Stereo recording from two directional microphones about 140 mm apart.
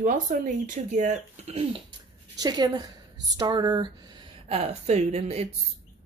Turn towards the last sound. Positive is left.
turn(degrees=-50)  # may be behind; listen again after turning